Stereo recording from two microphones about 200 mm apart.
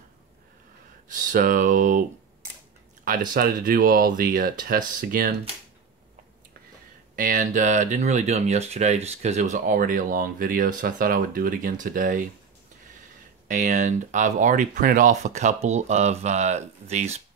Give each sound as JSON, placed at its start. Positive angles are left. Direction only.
{"t": 1.0, "sound": "speech", "side_deg": -40}
{"t": 3.1, "sound": "speech", "side_deg": -45}
{"t": 7.2, "sound": "speech", "side_deg": -45}
{"t": 13.5, "sound": "speech", "side_deg": -40}